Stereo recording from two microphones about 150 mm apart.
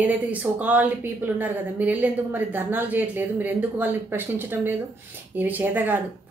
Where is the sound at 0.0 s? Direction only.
10° right (ahead or behind).